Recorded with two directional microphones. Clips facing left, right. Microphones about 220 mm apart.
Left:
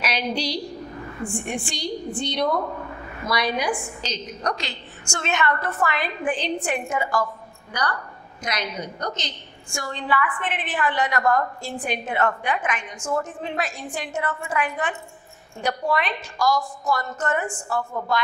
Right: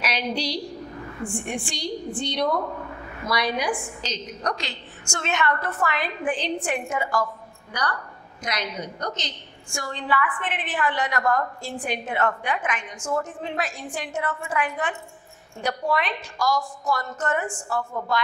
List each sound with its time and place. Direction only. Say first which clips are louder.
0.0 s a woman's voice: left 1 dB; 10° left (ahead or behind)
2.4 s a sound: left 1 dB; 30° left (ahead or behind)
3.3 s a woman's voice: left 1 dB; 10° left (ahead or behind)
6.9 s a woman's voice: left 1 dB; 25° left (ahead or behind)
8.5 s a woman's voice: left 1 dB; 10° left (ahead or behind)
16.4 s a woman's voice: left 2 dB; 30° left (ahead or behind)
17.3 s a woman's voice: left 1 dB; 20° left (ahead or behind)